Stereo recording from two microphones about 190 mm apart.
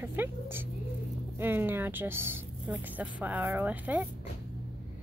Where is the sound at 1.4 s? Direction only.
10° right (ahead or behind).